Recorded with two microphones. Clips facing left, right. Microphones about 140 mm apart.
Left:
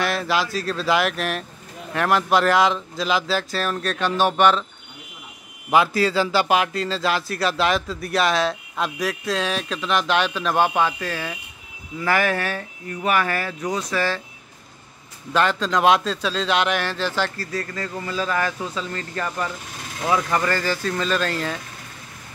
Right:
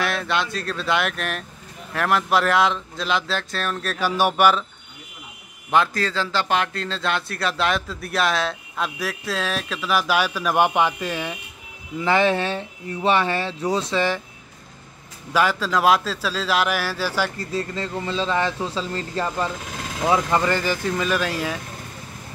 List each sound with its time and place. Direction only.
0.0 s a man's voice: centre (ahead or behind)
5.7 s a man's voice: 5° left (ahead or behind); by 14.2 s 20° right (ahead or behind)
15.3 s a man's voice: 5° right (ahead or behind)
17.4 s speech: 25° right (ahead or behind)